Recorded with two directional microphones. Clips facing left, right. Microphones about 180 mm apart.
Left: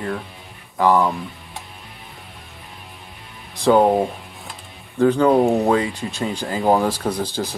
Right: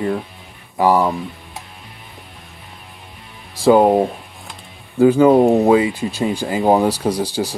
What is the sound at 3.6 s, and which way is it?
Music, 5° right (ahead or behind).